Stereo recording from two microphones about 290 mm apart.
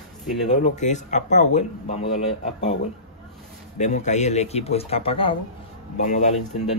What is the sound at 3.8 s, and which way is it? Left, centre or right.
Speech, left.